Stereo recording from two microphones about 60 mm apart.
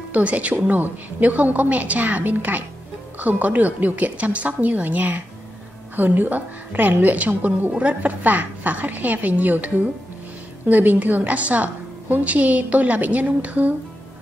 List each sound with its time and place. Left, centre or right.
0.1 s a woman's voice: right
10.7 s a woman's voice: right